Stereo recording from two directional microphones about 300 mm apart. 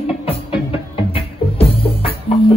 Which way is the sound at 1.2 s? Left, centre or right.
Centre.